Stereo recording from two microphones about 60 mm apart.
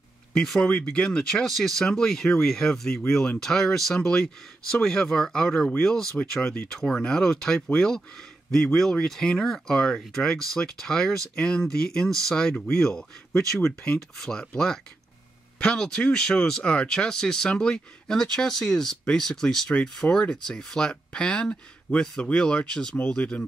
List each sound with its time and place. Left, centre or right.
0.4 s speech: centre
1.3 s speech: centre